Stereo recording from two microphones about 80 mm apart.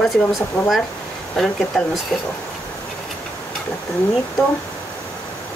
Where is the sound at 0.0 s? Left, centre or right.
Centre.